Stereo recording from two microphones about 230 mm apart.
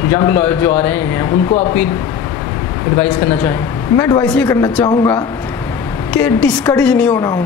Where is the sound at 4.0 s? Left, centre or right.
Centre.